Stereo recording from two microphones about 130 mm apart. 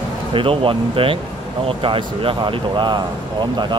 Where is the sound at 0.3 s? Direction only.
40° right (ahead or behind).